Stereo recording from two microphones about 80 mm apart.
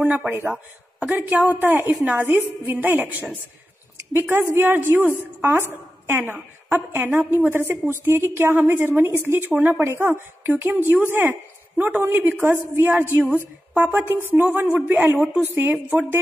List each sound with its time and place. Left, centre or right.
0.0 s a woman's voice: centre
9.5 s a woman's voice: centre
9.8 s a woman's voice: right